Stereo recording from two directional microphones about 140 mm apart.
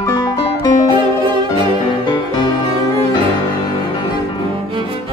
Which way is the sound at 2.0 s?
30° left (ahead or behind).